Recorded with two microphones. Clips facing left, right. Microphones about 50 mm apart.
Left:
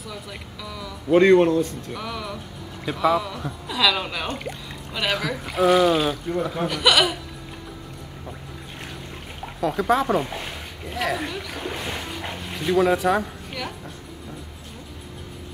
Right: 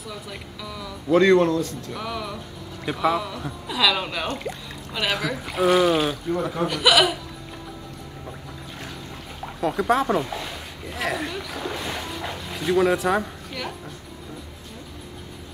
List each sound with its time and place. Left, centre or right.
0.7 s speech: centre
1.1 s a man's voice: left
2.0 s speech: centre
9.6 s speech: centre
10.2 s speech: centre
10.9 s speech: centre